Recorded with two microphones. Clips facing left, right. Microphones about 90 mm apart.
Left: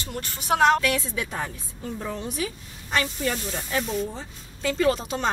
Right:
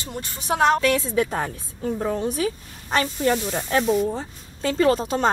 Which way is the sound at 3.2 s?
50° right (ahead or behind).